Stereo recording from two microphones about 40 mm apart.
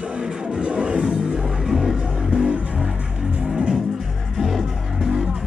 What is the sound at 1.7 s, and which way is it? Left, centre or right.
Music, centre.